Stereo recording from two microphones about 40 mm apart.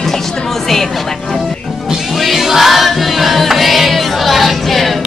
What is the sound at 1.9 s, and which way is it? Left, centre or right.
Music, centre.